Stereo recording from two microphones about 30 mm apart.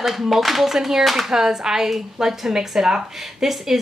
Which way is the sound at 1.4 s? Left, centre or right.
Centre.